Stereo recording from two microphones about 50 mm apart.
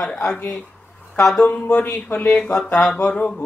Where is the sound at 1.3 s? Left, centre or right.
Centre.